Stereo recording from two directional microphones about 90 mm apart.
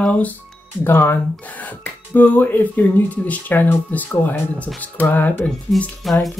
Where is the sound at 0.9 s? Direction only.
25° left (ahead or behind).